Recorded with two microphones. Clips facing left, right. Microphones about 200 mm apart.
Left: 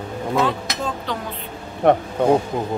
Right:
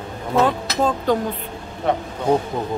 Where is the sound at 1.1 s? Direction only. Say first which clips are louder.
Right 9 dB; 45° right (ahead or behind).